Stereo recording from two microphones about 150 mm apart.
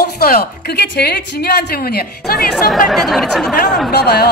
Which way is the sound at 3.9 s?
90° left.